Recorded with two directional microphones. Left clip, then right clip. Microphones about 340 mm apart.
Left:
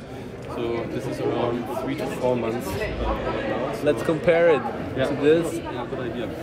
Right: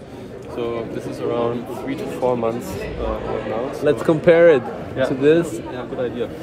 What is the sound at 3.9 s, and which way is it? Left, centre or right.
A man's voice, right.